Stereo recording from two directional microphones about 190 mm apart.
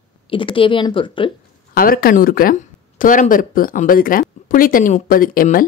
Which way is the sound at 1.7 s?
50° left (ahead or behind).